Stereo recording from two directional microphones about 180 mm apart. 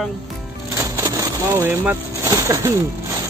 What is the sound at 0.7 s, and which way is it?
Speech, 15° right (ahead or behind).